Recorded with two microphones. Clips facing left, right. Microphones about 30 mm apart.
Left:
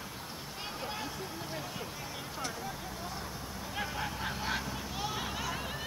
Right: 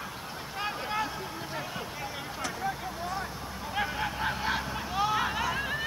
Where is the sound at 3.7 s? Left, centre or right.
Right.